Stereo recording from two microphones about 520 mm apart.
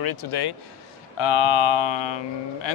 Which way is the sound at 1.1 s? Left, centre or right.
Left.